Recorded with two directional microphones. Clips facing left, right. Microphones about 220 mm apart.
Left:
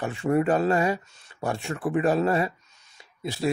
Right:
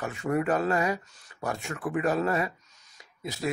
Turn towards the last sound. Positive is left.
turn(degrees=30)  # may be behind; listen again after turning